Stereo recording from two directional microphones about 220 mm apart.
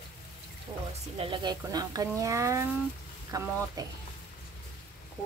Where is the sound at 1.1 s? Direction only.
25° right (ahead or behind).